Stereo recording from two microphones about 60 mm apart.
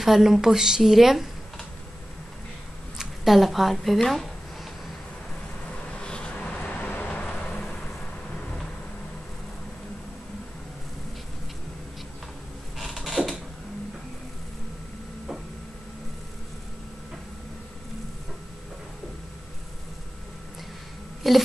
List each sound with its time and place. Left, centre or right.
0.0 s a woman's voice: centre
3.0 s speech: centre
5.9 s a sound: centre
6.3 s vehicle: left
12.7 s a sound: centre
21.2 s speech: centre